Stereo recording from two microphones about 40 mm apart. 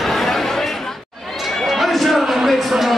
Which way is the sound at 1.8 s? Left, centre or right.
Centre.